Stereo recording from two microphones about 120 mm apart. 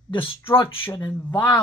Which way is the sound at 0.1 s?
50° left (ahead or behind).